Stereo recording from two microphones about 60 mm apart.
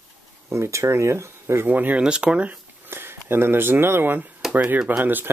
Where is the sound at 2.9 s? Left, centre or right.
Right.